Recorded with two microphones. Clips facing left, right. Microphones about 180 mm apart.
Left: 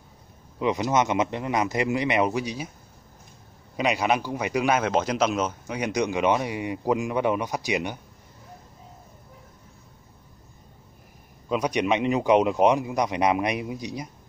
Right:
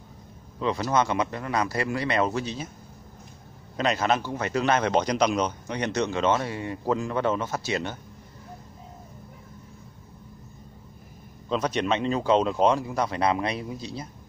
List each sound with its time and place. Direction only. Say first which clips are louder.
0.6 s speech: left 1 dB; 15° left (ahead or behind)
3.7 s a man's voice: left 1 dB; 10° left (ahead or behind)
11.4 s a man's voice: left 2 dB; 10° left (ahead or behind)